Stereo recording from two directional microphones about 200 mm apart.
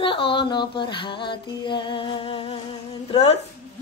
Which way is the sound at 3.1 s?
30° left (ahead or behind).